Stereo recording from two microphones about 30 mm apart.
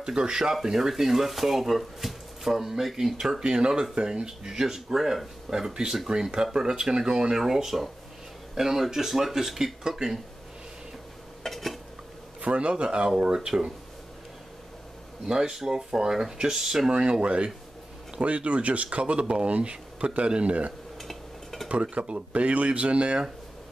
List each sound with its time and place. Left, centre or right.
0.0 s speech: right; by 3.0 s centre
3.2 s speech: right
6.0 s speech: right; by 9.9 s centre
11.4 s dishes: centre
12.4 s speech: right
15.2 s speech: right
16.9 s speech: right
19.2 s speech: right
21.0 s a sound: centre
21.9 s speech: right